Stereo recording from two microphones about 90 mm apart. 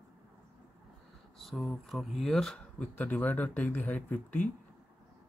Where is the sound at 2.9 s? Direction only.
15° left (ahead or behind).